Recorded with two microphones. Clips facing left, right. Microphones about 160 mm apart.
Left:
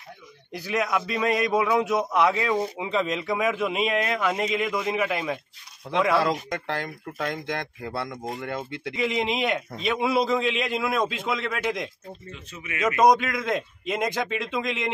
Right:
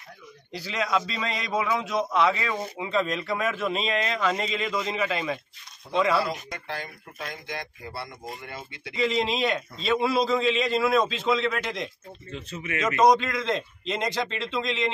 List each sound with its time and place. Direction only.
0.7 s a man's voice: 10° left (ahead or behind)
6.1 s speech: 90° left
8.3 s speech: 65° left (ahead or behind)
8.9 s a man's voice: 15° left (ahead or behind)
12.3 s speech: 30° right (ahead or behind)
12.7 s a man's voice: 10° left (ahead or behind)